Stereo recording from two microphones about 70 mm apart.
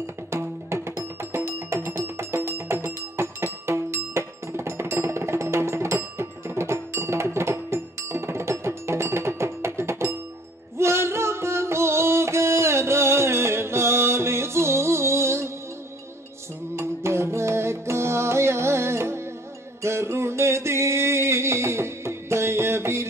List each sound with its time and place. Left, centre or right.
0.0 s music: right
16.7 s music: right
19.8 s a sound: right